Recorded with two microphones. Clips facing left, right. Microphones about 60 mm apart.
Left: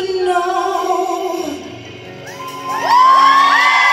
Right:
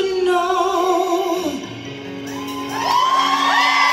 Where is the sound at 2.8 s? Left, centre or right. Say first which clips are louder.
Left 8 dB; left.